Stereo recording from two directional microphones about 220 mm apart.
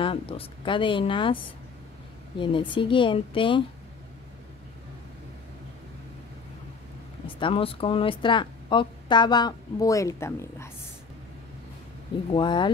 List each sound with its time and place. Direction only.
0.0 s a woman's voice: 25° left (ahead or behind)
7.3 s a woman's voice: 25° left (ahead or behind)
12.3 s a woman's voice: 20° left (ahead or behind)